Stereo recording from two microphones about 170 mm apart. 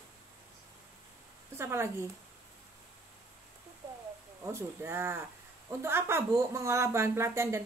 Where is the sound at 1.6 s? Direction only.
15° right (ahead or behind).